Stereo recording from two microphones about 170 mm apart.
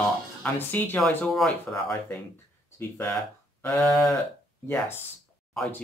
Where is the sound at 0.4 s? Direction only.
10° left (ahead or behind).